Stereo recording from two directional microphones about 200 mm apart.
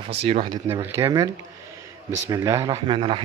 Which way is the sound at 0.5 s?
15° right (ahead or behind).